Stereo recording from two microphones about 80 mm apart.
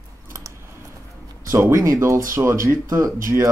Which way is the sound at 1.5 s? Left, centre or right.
Right.